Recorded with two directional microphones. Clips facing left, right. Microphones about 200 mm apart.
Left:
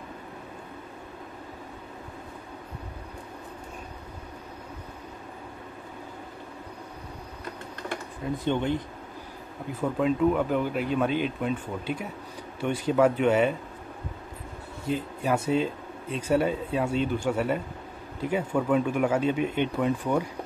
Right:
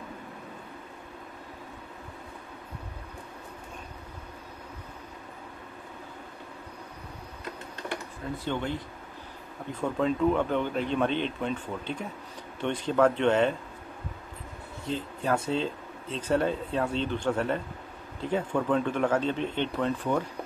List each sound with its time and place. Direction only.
8.5 s speech: 20° left (ahead or behind)
9.7 s speech: 5° left (ahead or behind)
14.9 s speech: 10° left (ahead or behind)